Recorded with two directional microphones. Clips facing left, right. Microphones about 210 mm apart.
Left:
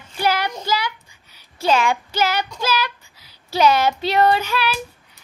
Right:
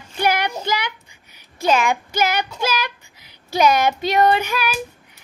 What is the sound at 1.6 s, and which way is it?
Speech, 15° right (ahead or behind).